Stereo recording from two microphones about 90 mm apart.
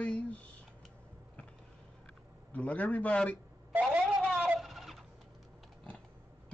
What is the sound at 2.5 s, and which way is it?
Speech, 15° left (ahead or behind).